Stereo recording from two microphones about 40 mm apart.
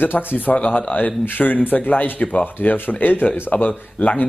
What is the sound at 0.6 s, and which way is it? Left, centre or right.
Speech, left.